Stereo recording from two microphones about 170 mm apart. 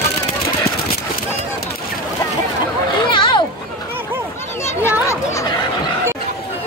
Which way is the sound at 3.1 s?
30° left (ahead or behind).